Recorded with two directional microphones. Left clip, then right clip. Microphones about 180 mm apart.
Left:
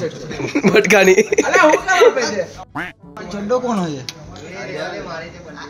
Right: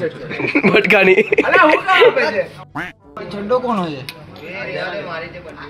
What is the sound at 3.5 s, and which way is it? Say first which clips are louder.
Speech: right 1 dB; 55° left (ahead or behind).